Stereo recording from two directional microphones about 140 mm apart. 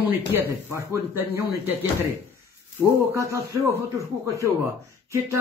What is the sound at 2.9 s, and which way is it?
Speech, 20° right (ahead or behind).